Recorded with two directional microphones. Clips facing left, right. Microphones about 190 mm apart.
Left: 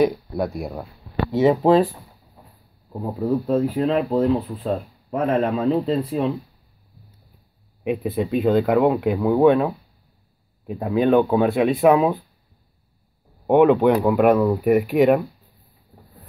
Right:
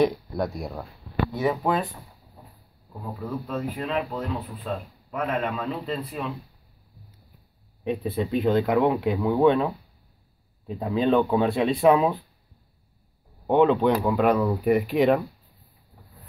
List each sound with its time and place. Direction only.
0.0 s speech: centre (ahead or behind)
1.3 s speech: 25° left (ahead or behind)
7.8 s speech: 15° left (ahead or behind)
13.5 s speech: 15° left (ahead or behind)